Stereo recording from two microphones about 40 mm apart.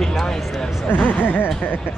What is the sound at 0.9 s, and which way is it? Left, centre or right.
Speech, left.